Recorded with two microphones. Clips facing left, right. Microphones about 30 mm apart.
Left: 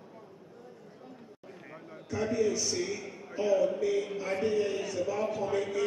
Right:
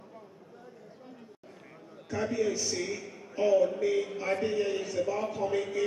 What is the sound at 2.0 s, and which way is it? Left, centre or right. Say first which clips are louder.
A man's voice: left 1 dB; centre.